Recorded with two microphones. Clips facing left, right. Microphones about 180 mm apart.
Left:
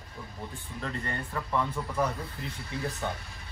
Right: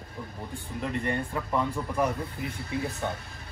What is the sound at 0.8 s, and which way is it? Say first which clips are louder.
Speech: right 6 dB; 15° right (ahead or behind).